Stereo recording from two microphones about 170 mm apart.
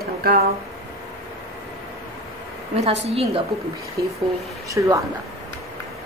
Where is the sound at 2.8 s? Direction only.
35° right (ahead or behind).